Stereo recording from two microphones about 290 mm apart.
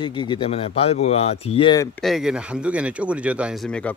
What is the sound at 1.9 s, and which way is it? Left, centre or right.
Speech, centre.